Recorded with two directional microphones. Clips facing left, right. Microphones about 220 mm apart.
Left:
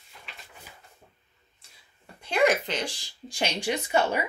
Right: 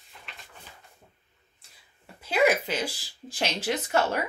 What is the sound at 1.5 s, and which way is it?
Speech, 5° right (ahead or behind).